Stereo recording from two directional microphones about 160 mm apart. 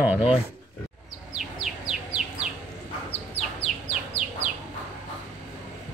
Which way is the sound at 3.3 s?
40° left (ahead or behind).